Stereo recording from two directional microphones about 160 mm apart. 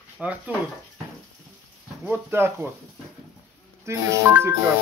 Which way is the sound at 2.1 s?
15° right (ahead or behind).